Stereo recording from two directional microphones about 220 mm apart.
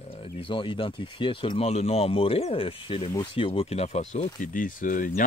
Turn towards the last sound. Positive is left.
turn(degrees=35)  # may be behind; listen again after turning